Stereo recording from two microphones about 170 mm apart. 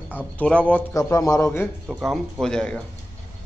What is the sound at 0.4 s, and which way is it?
Speech, 10° left (ahead or behind).